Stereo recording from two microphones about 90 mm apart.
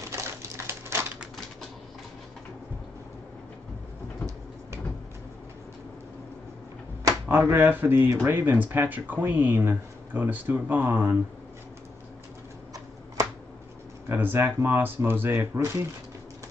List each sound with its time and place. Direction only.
0.1 s typewriter: 30° right (ahead or behind)
7.2 s speech: 25° right (ahead or behind)
14.0 s speech: 25° right (ahead or behind)